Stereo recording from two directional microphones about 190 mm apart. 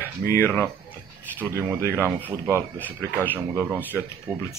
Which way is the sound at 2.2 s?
15° right (ahead or behind).